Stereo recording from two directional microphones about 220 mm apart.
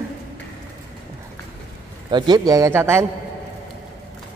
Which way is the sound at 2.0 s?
20° right (ahead or behind).